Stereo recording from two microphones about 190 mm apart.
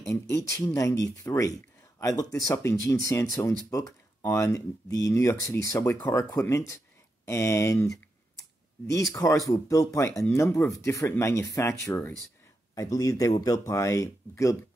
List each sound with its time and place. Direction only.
0.0 s speech: 15° left (ahead or behind)
9.1 s speech: 15° left (ahead or behind)